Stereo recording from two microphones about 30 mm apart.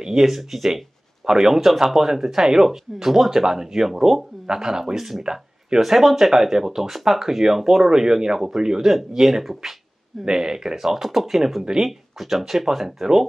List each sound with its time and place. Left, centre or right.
0.0 s speech: centre
0.3 s speech: centre
4.9 s speech: centre
5.2 s a sound: right
5.8 s speech: centre
10.3 s speech: centre
10.8 s speech: centre